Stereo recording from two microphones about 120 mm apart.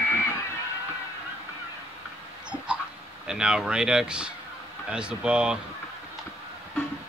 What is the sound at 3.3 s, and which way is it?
Speech, 5° right (ahead or behind).